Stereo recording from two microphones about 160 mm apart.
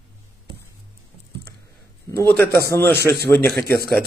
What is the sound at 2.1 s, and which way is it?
A man's voice, 15° left (ahead or behind).